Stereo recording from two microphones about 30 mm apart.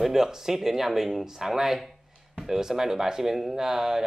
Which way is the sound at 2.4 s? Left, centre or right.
Centre.